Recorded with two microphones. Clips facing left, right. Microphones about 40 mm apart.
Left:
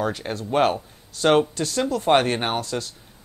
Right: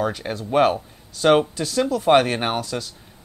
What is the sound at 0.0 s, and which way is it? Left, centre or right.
Speech, centre.